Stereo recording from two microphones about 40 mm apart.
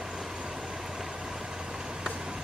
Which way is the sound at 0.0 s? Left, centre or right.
Centre.